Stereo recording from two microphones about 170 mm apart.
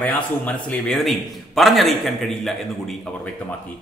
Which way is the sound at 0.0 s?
10° left (ahead or behind).